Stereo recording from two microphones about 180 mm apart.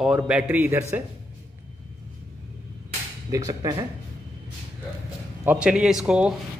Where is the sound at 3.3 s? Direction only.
20° right (ahead or behind).